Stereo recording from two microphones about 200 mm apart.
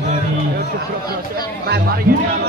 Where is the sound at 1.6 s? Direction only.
55° right (ahead or behind).